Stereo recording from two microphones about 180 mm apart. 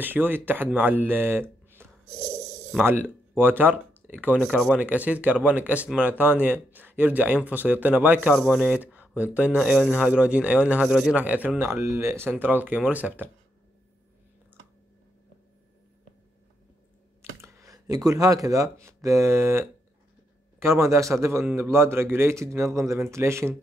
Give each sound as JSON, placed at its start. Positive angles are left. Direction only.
{"t": 0.0, "sound": "speech", "side_deg": -10}
{"t": 4.4, "sound": "speech", "side_deg": 0}
{"t": 17.2, "sound": "speech", "side_deg": -15}